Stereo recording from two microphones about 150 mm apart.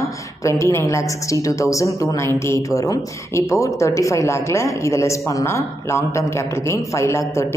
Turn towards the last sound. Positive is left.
turn(degrees=20)  # may be behind; listen again after turning